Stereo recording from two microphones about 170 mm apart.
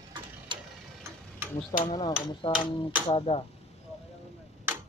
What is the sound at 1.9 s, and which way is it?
Speech, 25° left (ahead or behind).